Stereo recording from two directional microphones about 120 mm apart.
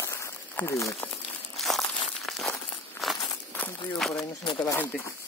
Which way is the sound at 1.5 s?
Centre (ahead or behind).